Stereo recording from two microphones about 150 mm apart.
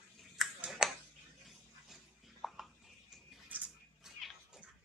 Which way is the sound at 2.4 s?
Centre (ahead or behind).